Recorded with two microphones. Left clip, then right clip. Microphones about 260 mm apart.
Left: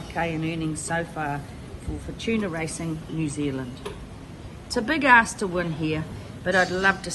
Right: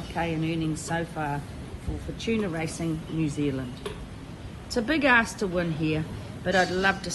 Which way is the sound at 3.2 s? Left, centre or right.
Left.